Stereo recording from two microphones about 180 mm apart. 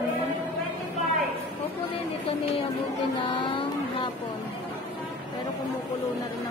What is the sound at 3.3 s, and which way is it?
Vehicle, 25° left (ahead or behind).